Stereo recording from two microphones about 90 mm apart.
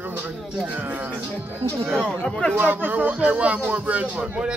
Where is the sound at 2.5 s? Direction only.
20° right (ahead or behind).